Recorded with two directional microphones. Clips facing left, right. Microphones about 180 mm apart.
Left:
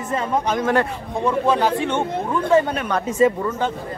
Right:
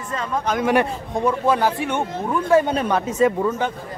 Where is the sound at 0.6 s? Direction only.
15° right (ahead or behind).